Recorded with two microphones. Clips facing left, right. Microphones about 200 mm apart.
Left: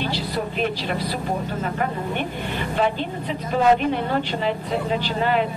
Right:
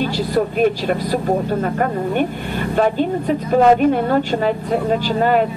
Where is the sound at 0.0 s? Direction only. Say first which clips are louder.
Right 7 dB; 45° right (ahead or behind).